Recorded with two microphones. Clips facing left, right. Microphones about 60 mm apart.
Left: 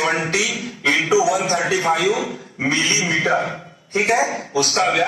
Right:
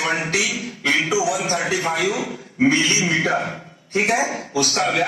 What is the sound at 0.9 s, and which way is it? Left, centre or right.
A man's voice, left.